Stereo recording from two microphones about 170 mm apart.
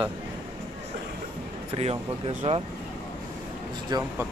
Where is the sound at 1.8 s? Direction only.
35° right (ahead or behind).